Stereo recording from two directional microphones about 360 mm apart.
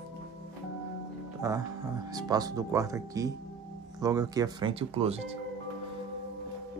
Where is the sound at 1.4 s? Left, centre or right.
Centre.